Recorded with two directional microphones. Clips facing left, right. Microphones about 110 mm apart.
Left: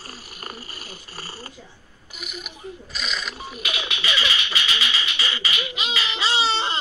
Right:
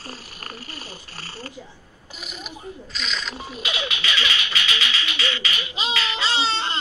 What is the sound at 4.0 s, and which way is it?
Music, 10° left (ahead or behind).